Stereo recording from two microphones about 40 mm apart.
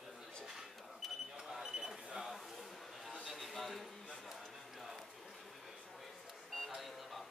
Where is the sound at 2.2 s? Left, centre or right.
Centre.